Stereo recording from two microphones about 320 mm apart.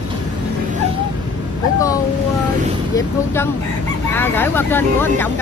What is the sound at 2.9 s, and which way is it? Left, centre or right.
Crowing, centre.